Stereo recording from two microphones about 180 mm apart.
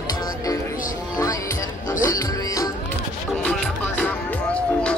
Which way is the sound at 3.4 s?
5° left (ahead or behind).